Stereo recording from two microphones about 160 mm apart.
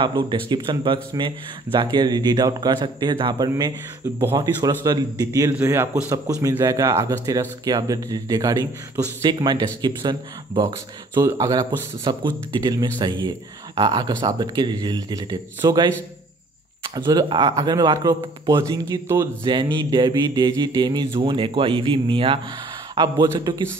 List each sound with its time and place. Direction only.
0.0 s speech: 30° right (ahead or behind)
5.6 s speech: 15° right (ahead or behind)
19.4 s speech: 30° right (ahead or behind)
23.2 s speech: 15° right (ahead or behind)